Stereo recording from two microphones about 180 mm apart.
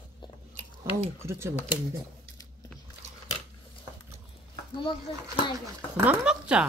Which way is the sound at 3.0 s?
40° right (ahead or behind).